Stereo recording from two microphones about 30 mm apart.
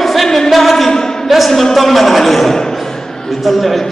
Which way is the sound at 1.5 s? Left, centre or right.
Centre.